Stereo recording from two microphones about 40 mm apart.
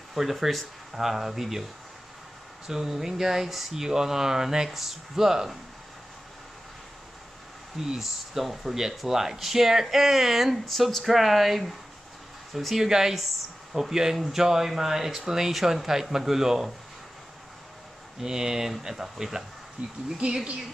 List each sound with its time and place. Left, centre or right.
0.1 s speech: centre
7.7 s speech: centre
18.2 s speech: centre
19.8 s speech: right